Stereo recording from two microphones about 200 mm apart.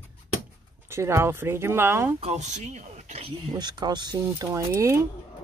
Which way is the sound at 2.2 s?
35° right (ahead or behind).